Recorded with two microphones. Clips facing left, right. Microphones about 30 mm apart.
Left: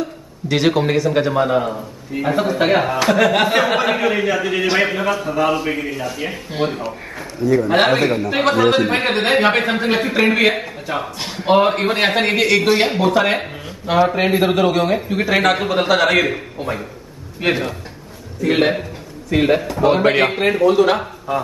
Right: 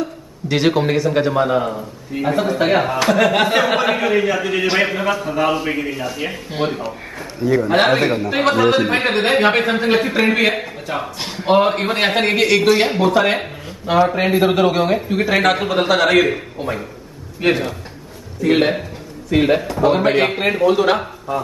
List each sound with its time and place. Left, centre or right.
0.0 s a man's voice: centre